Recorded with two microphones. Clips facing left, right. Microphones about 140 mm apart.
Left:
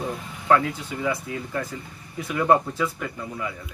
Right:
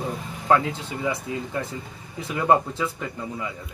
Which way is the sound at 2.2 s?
25° right (ahead or behind).